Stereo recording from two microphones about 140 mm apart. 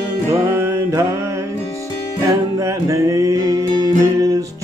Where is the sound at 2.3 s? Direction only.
25° right (ahead or behind).